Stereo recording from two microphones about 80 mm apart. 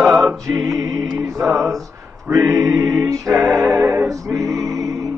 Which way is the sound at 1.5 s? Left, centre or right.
Centre.